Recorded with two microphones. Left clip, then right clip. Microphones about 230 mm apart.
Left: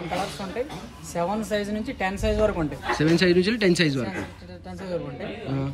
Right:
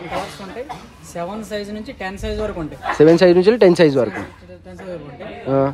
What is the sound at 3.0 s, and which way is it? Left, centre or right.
Speech, centre.